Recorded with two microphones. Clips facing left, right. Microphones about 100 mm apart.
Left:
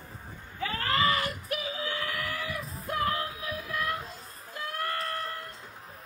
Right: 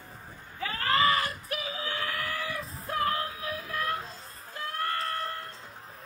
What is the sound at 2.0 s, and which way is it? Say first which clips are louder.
Music: right 1 dB; 35° right (ahead or behind).